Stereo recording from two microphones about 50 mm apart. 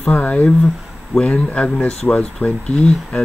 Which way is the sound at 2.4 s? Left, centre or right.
Left.